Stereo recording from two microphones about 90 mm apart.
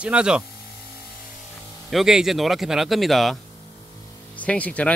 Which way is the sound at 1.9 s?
5° right (ahead or behind).